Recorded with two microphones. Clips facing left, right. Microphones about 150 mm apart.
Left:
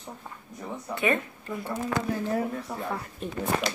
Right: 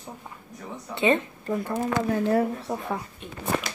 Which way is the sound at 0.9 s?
25° right (ahead or behind).